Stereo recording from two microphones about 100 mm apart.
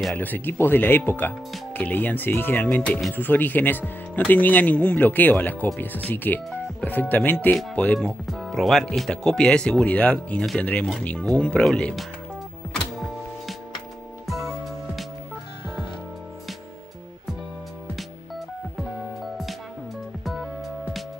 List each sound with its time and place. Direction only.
0.1 s speech: 20° left (ahead or behind)
8.3 s speech: centre (ahead or behind)
14.2 s music: centre (ahead or behind)